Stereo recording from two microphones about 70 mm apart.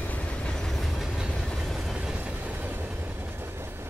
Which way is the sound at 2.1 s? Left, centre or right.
Right.